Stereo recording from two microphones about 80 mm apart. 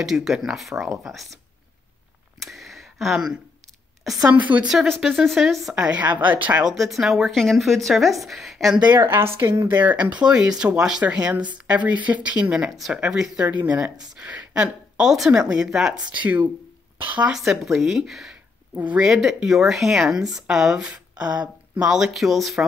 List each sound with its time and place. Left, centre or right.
0.0 s speech: centre
2.4 s a sound: centre
4.0 s a woman's voice: centre
5.8 s speech: centre
6.6 s speech: centre
9.0 s speech: right; by 13.6 s centre
13.6 s speech: right; by 16.0 s centre
16.1 s speech: centre
17.3 s speech: centre
18.3 s a sound: centre
19.1 s speech: centre